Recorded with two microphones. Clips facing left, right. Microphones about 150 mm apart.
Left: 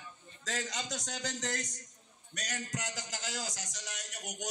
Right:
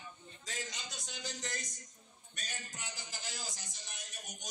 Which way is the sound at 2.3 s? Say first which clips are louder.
Left 9 dB; 85° left.